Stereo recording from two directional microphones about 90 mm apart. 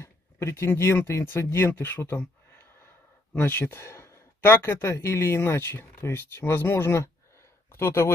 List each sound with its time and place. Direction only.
0.0 s speech: 30° left (ahead or behind)